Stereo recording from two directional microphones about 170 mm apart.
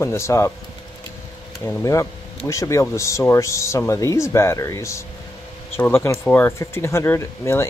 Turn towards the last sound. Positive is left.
turn(degrees=15)  # may be behind; listen again after turning